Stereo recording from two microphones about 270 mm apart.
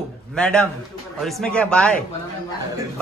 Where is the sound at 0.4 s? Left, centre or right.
Centre.